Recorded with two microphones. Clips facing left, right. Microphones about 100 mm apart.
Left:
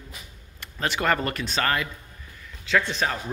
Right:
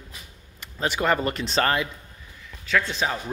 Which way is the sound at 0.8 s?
15° right (ahead or behind).